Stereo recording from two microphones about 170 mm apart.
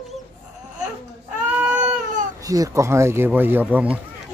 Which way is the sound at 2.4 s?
20° right (ahead or behind).